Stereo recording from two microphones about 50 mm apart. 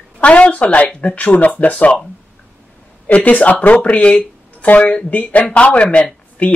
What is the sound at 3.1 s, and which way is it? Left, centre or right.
Speech, left.